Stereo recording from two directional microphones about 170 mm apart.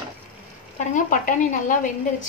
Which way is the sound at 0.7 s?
50° left (ahead or behind).